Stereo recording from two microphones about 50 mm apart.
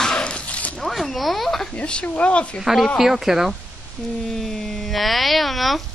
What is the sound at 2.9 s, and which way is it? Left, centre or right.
Speech, centre.